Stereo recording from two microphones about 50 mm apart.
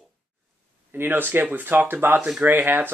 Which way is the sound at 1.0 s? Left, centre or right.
Right.